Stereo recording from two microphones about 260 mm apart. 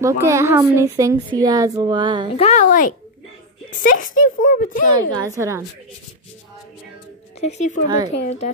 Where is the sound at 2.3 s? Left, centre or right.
Left.